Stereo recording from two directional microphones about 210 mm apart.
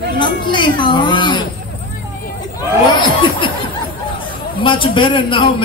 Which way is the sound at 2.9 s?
25° left (ahead or behind).